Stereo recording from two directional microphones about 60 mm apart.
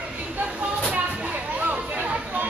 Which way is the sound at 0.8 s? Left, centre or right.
Right.